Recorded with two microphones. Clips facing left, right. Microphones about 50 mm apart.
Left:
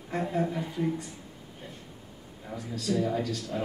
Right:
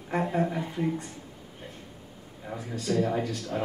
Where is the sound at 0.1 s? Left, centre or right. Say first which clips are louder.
Right 2 dB; right.